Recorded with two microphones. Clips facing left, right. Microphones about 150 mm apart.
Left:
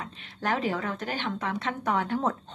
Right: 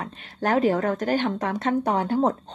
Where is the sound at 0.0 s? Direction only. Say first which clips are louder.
Right 6 dB; 45° right (ahead or behind).